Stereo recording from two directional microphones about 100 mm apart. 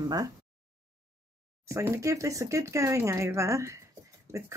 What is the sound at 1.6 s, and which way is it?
Speech, 30° right (ahead or behind).